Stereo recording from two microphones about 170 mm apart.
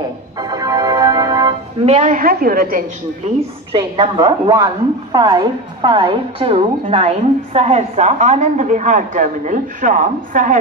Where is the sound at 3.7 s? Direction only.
30° right (ahead or behind).